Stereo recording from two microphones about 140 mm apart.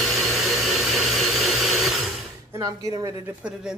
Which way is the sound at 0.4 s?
Centre (ahead or behind).